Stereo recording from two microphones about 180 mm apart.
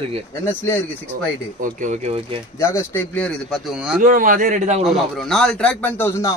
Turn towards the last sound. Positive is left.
turn(degrees=15)  # may be behind; listen again after turning